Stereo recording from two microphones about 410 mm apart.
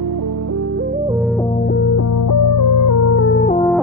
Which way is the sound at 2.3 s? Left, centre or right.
Left.